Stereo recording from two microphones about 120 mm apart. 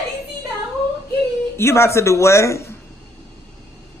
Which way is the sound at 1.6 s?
20° left (ahead or behind).